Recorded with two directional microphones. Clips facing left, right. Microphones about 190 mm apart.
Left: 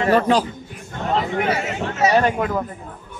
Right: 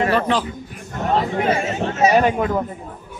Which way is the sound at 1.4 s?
25° right (ahead or behind).